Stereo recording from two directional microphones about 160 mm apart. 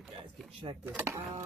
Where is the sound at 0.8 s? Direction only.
15° right (ahead or behind).